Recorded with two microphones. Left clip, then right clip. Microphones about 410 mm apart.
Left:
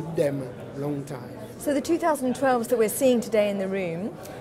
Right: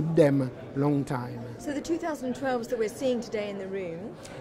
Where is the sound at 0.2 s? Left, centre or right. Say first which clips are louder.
Right 3 dB; right.